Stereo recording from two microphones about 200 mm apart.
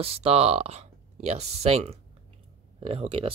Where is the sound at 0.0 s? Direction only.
30° right (ahead or behind).